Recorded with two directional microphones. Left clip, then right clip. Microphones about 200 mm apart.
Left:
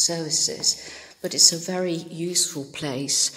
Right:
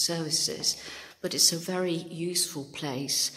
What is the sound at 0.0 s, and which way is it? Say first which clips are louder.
A woman's voice: left 5 dB; 5° right (ahead or behind).